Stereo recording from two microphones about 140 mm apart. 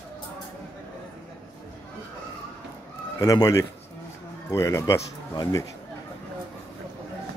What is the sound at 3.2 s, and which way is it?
Speech, 25° left (ahead or behind).